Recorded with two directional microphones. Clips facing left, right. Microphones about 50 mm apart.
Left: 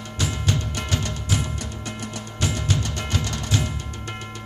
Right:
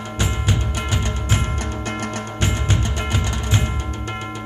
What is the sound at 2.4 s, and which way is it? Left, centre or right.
Music, right.